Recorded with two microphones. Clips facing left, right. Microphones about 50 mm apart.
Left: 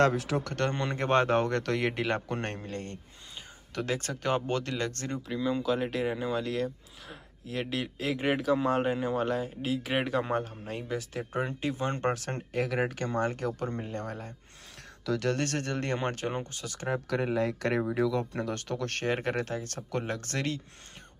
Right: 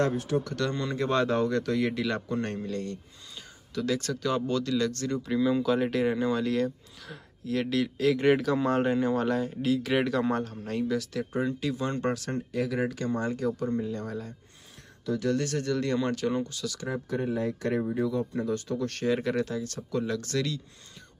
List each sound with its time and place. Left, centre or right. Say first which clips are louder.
0.0 s speech: left 1 dB; left
0.5 s speech: even; left
5.3 s speech: right 4 dB; centre
10.9 s speech: right 4 dB; left
17.1 s speech: even; left
17.9 s speech: even; left
18.3 s speech: right 3 dB; left